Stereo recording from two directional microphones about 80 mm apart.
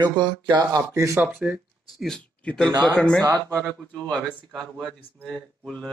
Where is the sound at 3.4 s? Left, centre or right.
Right.